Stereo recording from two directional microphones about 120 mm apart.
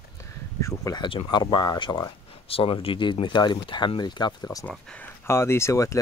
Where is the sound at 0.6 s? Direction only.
25° left (ahead or behind).